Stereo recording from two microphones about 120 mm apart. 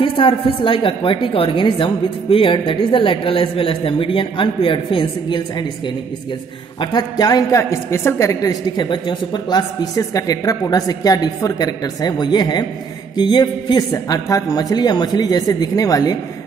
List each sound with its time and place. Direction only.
0.0 s a woman's voice: 45° left (ahead or behind)
6.8 s a woman's voice: 35° left (ahead or behind)